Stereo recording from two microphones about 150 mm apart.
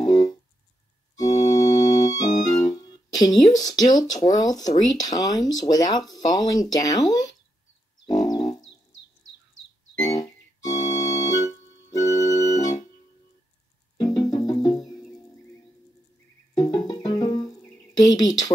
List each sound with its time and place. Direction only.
0.0 s music: 25° left (ahead or behind)
1.1 s organ: 25° left (ahead or behind)
3.5 s speech: 25° left (ahead or behind)
8.0 s music: 25° left (ahead or behind)
9.9 s organ: 25° left (ahead or behind)
13.9 s music: 25° left (ahead or behind)
16.5 s music: 25° left (ahead or behind)